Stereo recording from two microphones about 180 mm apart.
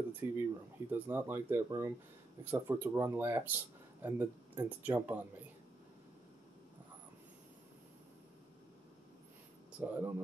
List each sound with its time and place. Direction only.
0.2 s speech: 15° right (ahead or behind)
9.8 s speech: 10° right (ahead or behind)